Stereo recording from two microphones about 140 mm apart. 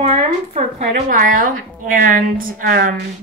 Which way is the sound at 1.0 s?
75° right (ahead or behind).